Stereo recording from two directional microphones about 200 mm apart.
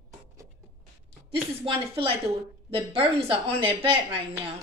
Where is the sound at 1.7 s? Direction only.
25° right (ahead or behind).